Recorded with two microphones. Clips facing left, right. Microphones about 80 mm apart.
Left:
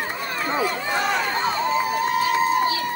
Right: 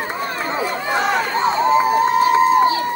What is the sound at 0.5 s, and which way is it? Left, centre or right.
Speech, right.